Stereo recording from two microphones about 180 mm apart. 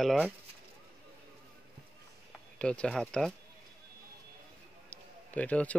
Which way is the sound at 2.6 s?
5° left (ahead or behind).